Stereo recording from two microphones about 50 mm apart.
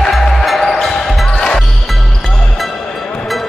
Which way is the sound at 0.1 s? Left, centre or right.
Centre.